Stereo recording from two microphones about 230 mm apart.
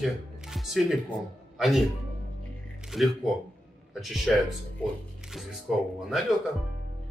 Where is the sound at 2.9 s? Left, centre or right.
Centre.